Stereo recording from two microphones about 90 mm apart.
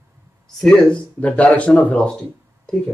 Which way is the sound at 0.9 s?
15° left (ahead or behind).